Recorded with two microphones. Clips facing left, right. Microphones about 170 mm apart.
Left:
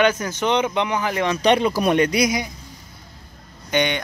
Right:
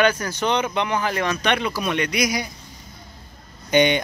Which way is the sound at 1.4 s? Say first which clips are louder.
Left 6 dB; 35° left (ahead or behind).